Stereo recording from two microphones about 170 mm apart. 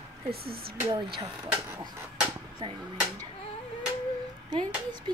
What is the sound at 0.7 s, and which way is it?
Speech, 30° right (ahead or behind).